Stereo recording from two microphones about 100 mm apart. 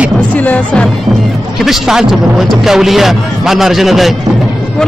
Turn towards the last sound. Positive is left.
turn(degrees=0)  # may be behind; listen again after turning